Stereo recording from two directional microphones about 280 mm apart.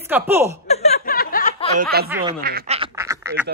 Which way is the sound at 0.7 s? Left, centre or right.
Left.